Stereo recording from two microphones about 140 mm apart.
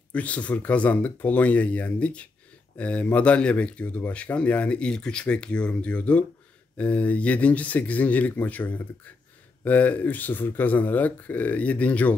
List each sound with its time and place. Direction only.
0.1 s speech: 10° left (ahead or behind)